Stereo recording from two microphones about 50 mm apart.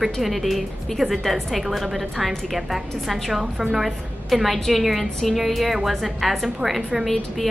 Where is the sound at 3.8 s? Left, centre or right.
Centre.